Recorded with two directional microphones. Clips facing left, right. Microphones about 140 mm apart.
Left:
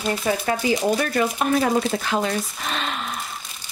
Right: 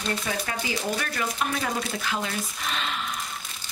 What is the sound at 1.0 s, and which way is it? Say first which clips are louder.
Speech: left 7 dB; 40° left (ahead or behind).